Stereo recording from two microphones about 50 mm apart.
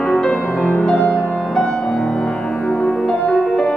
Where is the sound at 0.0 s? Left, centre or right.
Centre.